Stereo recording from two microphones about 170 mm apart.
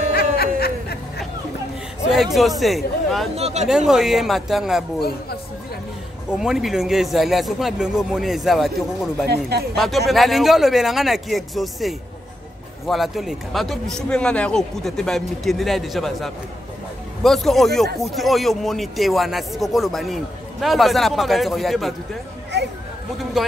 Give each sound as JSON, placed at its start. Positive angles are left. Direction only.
{"t": 0.1, "sound": "music", "side_deg": 65}
{"t": 2.6, "sound": "a man's voice", "side_deg": 0}
{"t": 3.3, "sound": "speech", "side_deg": -40}
{"t": 3.6, "sound": "a man's voice", "side_deg": -5}
{"t": 6.3, "sound": "a man's voice", "side_deg": -5}
{"t": 9.3, "sound": "speech", "side_deg": -70}
{"t": 9.8, "sound": "a man's voice", "side_deg": 0}
{"t": 22.5, "sound": "a sound", "side_deg": -80}